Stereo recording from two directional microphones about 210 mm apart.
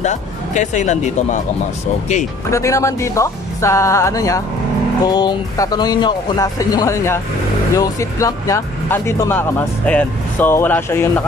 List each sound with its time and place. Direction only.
0.0 s speech: 35° left (ahead or behind)
2.5 s speech: 15° left (ahead or behind)